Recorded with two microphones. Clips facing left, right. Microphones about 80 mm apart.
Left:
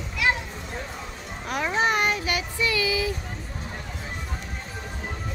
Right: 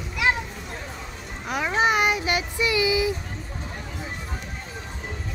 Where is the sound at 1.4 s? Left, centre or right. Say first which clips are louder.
Right 2 dB; centre.